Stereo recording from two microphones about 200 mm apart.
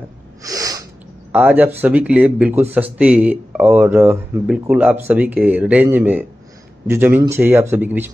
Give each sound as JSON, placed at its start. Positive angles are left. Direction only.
{"t": 0.4, "sound": "sneeze", "side_deg": -15}
{"t": 1.3, "sound": "speech", "side_deg": -10}